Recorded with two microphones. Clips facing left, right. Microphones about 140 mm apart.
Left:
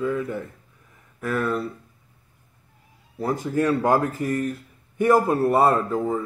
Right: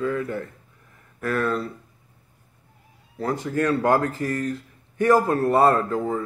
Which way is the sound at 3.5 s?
15° left (ahead or behind).